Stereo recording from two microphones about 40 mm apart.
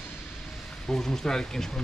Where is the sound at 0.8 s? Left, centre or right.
Centre.